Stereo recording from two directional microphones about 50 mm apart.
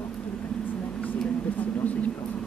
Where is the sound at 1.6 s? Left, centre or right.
Left.